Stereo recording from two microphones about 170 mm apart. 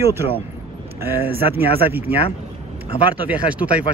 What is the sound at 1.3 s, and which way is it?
Speech, 65° right (ahead or behind).